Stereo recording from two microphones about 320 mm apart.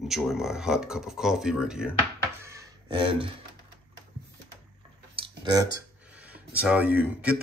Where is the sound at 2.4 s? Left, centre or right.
Centre.